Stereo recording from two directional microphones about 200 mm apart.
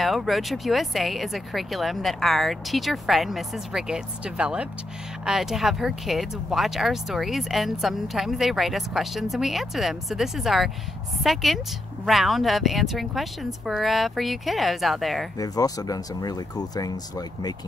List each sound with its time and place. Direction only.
0.0 s speech: centre (ahead or behind)
15.3 s speech: 20° left (ahead or behind)